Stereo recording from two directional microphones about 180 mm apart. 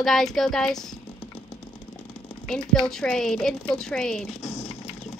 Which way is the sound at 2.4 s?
5° left (ahead or behind).